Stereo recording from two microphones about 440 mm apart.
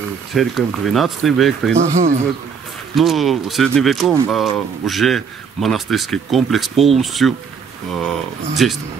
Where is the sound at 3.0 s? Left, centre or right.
Centre.